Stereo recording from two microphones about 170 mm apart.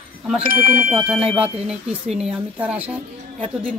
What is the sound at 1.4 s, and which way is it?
Speech, 5° right (ahead or behind).